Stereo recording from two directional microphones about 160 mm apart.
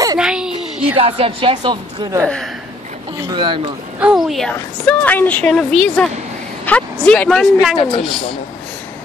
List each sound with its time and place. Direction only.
0.2 s a sound: 5° right (ahead or behind)
0.9 s speech: 35° right (ahead or behind)
2.2 s a woman's voice: 5° left (ahead or behind)
3.3 s speech: 30° right (ahead or behind)
4.0 s a woman's voice: centre (ahead or behind)
7.7 s a woman's voice: 35° left (ahead or behind)